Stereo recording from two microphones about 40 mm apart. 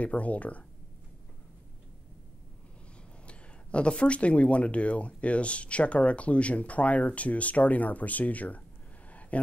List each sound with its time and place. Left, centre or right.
0.0 s speech: left
3.3 s speech: left